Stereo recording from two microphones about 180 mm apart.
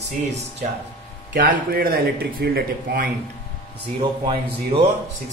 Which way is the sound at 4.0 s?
30° right (ahead or behind).